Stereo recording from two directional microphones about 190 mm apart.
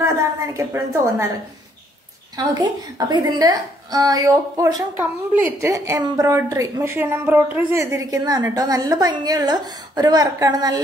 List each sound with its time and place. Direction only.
0.0 s a woman's voice: 15° right (ahead or behind)
2.3 s a woman's voice: 20° right (ahead or behind)